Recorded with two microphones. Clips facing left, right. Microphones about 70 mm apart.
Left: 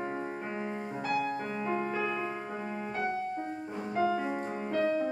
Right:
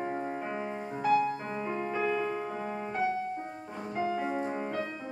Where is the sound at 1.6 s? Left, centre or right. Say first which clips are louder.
Right 1 dB; centre.